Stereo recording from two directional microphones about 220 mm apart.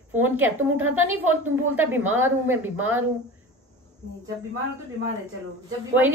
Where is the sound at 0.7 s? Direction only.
70° right (ahead or behind).